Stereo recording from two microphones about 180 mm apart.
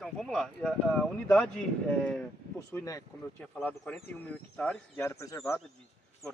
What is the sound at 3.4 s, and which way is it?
Speech, 5° left (ahead or behind).